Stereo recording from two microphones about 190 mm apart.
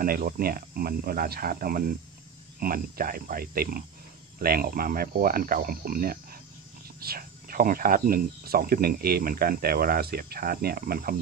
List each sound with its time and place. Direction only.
0.0 s speech: 50° right (ahead or behind)